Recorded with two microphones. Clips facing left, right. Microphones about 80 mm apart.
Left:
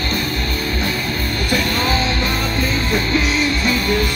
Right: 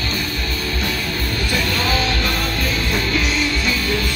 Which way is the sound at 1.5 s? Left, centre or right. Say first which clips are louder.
Left 3 dB; left.